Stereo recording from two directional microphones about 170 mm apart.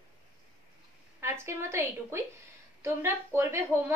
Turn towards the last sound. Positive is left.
turn(degrees=-15)  # may be behind; listen again after turning